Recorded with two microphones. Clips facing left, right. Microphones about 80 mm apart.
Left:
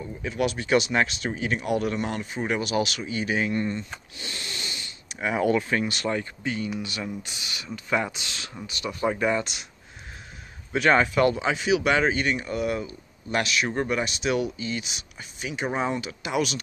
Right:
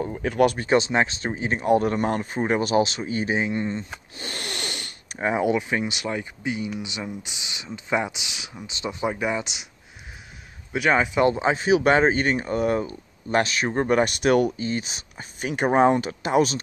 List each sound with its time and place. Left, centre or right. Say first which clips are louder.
0.0 s speech: right 7 dB; right
0.7 s speech: right 2 dB; right
4.2 s a sound: right 5 dB; right
5.4 s speech: left 3 dB; centre
10.7 s speech: left 1 dB; centre
11.1 s speech: right 2 dB; right
13.8 s speech: right 6 dB; right
15.5 s speech: right 9 dB; right